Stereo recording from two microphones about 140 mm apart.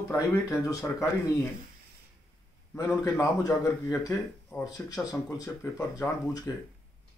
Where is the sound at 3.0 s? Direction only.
20° left (ahead or behind).